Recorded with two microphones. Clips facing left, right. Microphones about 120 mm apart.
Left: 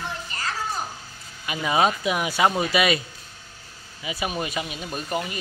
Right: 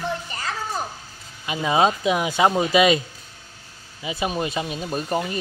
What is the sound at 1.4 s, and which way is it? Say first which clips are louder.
Speech: right 2 dB; 25° right (ahead or behind).